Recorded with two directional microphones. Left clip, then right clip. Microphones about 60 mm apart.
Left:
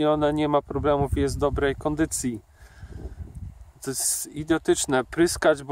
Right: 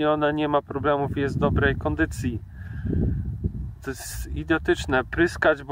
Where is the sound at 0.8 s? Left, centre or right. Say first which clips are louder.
Even; left.